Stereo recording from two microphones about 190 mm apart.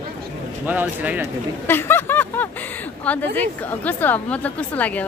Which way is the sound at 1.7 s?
10° left (ahead or behind).